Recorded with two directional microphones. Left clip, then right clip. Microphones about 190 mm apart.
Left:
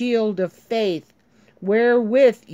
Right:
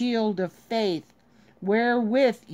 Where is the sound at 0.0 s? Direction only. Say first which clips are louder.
Left 5 dB; 20° left (ahead or behind).